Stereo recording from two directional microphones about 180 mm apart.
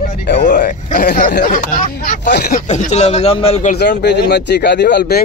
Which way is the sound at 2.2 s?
60° left (ahead or behind).